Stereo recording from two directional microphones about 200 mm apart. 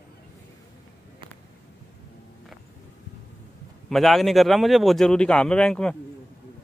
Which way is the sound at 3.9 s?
Centre (ahead or behind).